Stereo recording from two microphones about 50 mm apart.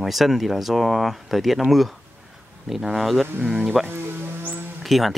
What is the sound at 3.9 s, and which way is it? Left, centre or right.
Music, right.